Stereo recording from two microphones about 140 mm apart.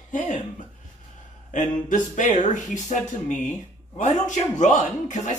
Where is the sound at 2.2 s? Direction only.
60° left (ahead or behind).